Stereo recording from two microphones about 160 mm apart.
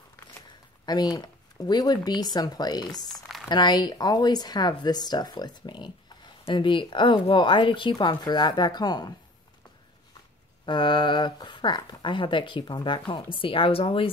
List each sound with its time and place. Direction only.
0.8 s speech: 25° left (ahead or behind)
3.1 s a sound: centre (ahead or behind)
3.4 s speech: 25° left (ahead or behind)
10.6 s speech: 30° left (ahead or behind)